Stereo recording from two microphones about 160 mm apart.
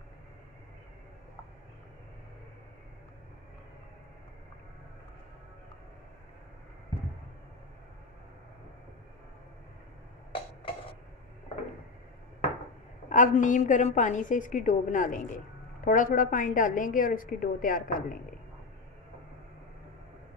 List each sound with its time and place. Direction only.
13.1 s a woman's voice: 50° left (ahead or behind)